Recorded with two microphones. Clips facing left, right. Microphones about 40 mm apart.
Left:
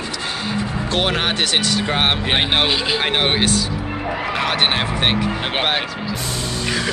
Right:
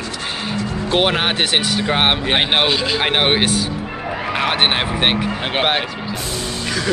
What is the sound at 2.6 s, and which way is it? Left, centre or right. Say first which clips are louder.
Speech: right 1 dB; centre.